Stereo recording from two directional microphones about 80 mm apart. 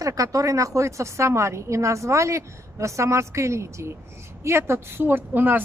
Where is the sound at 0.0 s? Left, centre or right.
Right.